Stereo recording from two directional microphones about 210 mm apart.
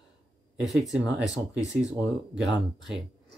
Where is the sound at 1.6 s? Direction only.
15° left (ahead or behind).